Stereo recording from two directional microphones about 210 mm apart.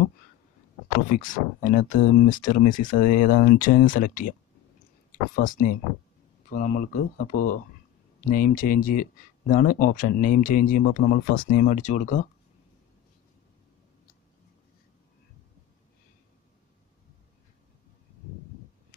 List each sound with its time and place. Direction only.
1.0 s speech: 40° left (ahead or behind)